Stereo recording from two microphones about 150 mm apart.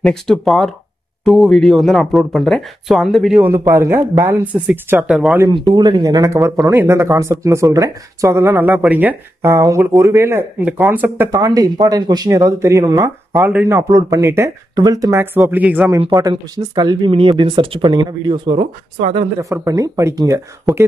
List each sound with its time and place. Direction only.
0.0 s speech: 5° left (ahead or behind)
3.5 s speech: 15° right (ahead or behind)
5.5 s speech: 30° right (ahead or behind); by 15.9 s 10° right (ahead or behind)
16.1 s speech: 25° right (ahead or behind)
18.6 s speech: 40° right (ahead or behind)
19.5 s speech: 20° right (ahead or behind)